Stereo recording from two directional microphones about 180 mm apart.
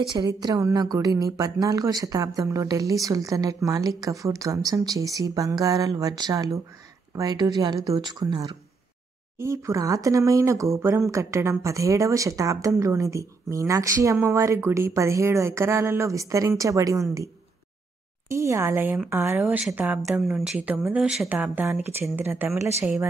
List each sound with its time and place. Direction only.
0.1 s a woman's voice: 25° right (ahead or behind)
18.3 s speech: 15° right (ahead or behind)